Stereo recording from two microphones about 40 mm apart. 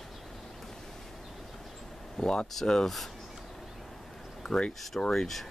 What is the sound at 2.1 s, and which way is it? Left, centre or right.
Speech, centre.